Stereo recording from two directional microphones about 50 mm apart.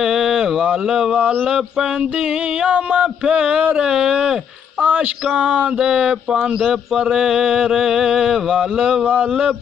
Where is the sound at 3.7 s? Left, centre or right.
Centre.